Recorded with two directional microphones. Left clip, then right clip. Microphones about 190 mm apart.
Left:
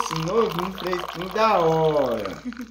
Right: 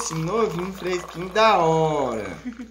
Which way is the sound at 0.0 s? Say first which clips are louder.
Left 3 dB; 20° left (ahead or behind).